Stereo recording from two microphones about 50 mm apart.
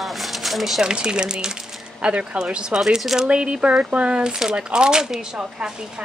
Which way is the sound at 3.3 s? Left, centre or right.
Right.